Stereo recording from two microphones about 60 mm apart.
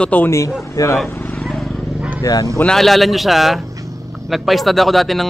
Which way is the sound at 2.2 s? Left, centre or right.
Left.